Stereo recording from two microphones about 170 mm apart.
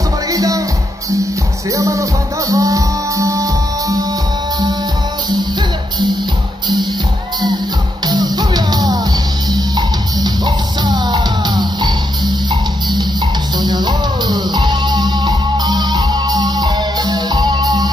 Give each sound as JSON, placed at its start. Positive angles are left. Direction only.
{"t": 0.3, "sound": "music", "side_deg": -20}
{"t": 1.8, "sound": "music", "side_deg": -20}
{"t": 8.1, "sound": "music", "side_deg": -25}
{"t": 13.6, "sound": "music", "side_deg": -25}